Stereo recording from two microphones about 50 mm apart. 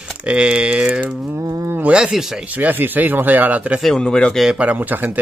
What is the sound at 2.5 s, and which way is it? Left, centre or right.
Speech, right.